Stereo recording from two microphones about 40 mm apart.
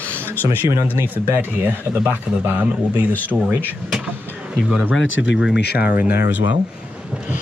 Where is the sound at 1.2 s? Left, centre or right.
Right.